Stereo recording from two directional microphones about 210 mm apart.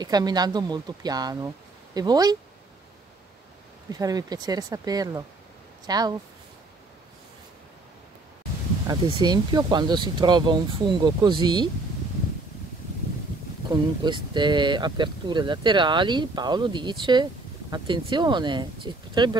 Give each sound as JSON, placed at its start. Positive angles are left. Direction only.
{"t": 0.0, "sound": "speech", "side_deg": -20}
{"t": 3.9, "sound": "speech", "side_deg": -20}
{"t": 8.8, "sound": "speech", "side_deg": -20}
{"t": 13.7, "sound": "speech", "side_deg": -20}